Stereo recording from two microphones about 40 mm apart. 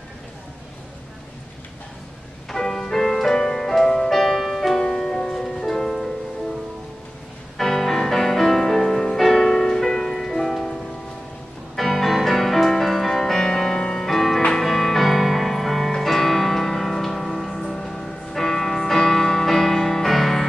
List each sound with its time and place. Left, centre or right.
2.5 s music: centre
4.7 s music: centre
7.5 s music: centre